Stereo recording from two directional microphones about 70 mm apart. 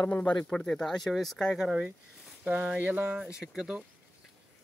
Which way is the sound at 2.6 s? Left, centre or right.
Right.